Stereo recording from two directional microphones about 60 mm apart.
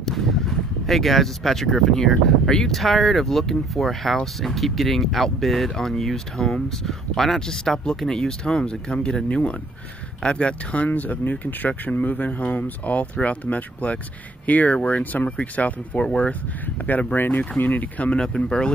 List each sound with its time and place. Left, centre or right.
0.0 s speech: centre; by 16.1 s left
17.1 s speech: left
18.1 s speech: centre